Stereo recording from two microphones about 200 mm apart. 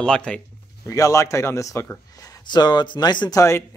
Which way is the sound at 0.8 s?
15° left (ahead or behind).